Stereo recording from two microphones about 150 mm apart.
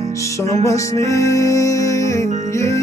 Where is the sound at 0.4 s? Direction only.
20° left (ahead or behind).